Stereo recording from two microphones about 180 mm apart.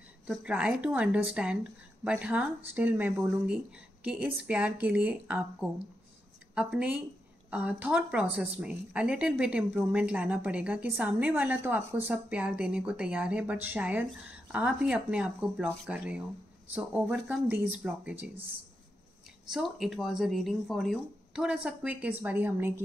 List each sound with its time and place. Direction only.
0.3 s a woman's voice: 5° right (ahead or behind)
19.5 s speech: centre (ahead or behind)